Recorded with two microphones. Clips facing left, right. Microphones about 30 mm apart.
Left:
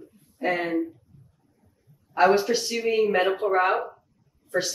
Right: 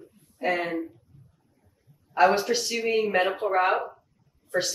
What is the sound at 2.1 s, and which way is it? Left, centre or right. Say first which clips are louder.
A woman's voice: left 1 dB; centre.